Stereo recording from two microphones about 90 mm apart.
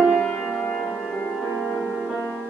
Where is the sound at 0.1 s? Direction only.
15° left (ahead or behind).